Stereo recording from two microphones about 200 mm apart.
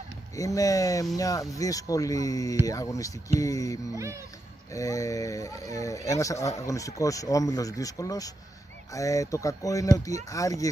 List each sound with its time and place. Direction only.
0.4 s speech: 15° left (ahead or behind)
3.9 s speech: 15° right (ahead or behind)
4.7 s speech: 15° left (ahead or behind)